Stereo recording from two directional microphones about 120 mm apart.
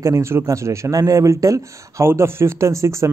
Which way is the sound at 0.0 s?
25° right (ahead or behind).